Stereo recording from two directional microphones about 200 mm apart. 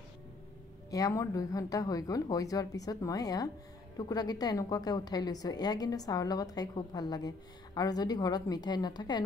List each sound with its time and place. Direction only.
0.8 s a woman's voice: 15° left (ahead or behind)